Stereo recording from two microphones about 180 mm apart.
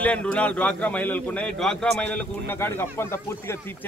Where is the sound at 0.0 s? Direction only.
5° left (ahead or behind).